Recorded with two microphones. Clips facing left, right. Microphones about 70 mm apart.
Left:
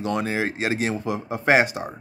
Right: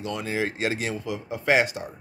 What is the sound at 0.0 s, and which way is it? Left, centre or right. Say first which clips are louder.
Speech: left 4 dB; left.